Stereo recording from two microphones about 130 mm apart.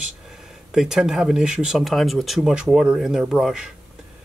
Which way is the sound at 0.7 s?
5° right (ahead or behind).